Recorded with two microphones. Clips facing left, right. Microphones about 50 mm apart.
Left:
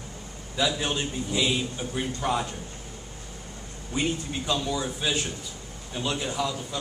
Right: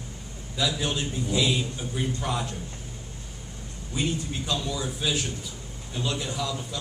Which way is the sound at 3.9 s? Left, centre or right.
Centre.